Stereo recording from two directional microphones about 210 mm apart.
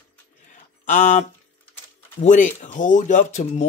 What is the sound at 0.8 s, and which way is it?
Speech, 35° left (ahead or behind).